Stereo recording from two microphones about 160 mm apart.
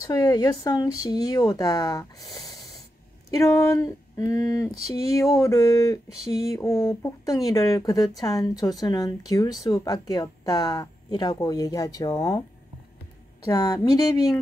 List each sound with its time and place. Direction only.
0.0 s speech: 20° left (ahead or behind)
4.7 s a sound: 40° right (ahead or behind)
5.1 s speech: 20° left (ahead or behind)
13.4 s speech: 25° left (ahead or behind)